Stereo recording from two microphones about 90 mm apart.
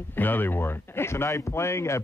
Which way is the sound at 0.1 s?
20° left (ahead or behind).